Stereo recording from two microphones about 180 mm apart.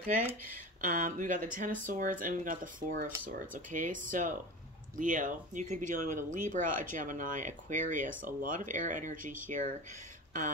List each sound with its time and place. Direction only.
0.7 s speech: 50° right (ahead or behind)